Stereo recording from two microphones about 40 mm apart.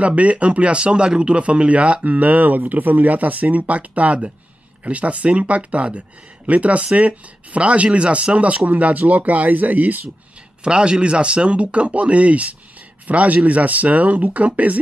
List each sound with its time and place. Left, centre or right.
0.0 s speech: right
10.6 s speech: right